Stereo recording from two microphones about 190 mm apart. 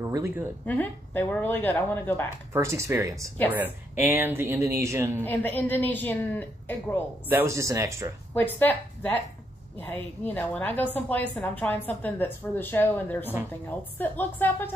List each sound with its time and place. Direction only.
0.0 s speech: 15° right (ahead or behind)
0.7 s a woman's voice: 10° left (ahead or behind)
2.5 s speech: 15° right (ahead or behind)
5.2 s a woman's voice: 10° left (ahead or behind)
7.2 s speech: 15° right (ahead or behind)
8.4 s a woman's voice: 10° left (ahead or behind)